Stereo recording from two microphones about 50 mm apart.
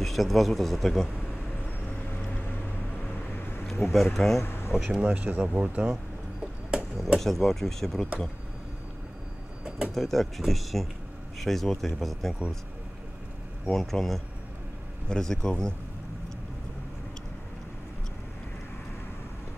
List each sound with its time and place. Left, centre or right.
0.0 s speech: centre
1.9 s vehicle: left
3.3 s a sound: left
3.8 s speech: centre
4.4 s a sound: left
4.7 s speech: centre
5.0 s speech: right
7.2 s speech: centre
9.9 s speech: centre
13.7 s speech: centre